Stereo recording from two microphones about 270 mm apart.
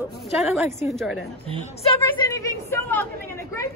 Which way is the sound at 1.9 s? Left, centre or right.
Centre.